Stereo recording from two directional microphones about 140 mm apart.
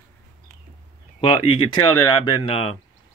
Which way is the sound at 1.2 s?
40° left (ahead or behind).